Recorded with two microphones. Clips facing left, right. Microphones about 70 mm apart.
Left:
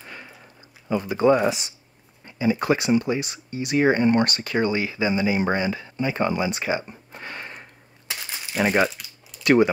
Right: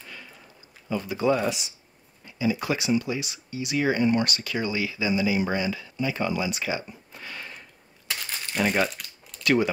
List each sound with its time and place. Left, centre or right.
0.0 s a sound: left
0.8 s speech: left
8.1 s crumpling: centre
9.4 s speech: left